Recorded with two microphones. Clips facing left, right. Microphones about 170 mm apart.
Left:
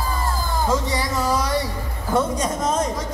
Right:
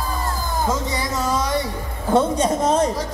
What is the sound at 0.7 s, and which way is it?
Music, 20° right (ahead or behind).